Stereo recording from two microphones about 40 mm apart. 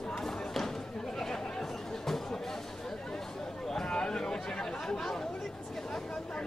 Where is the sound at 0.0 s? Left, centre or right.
Centre.